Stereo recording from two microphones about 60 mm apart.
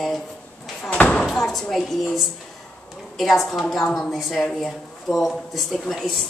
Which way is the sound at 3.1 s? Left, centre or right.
Centre.